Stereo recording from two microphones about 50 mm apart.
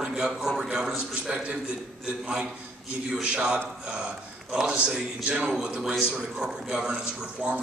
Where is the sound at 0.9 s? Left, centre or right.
Right.